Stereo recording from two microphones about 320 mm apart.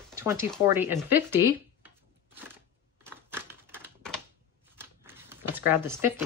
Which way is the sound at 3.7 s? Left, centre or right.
Centre.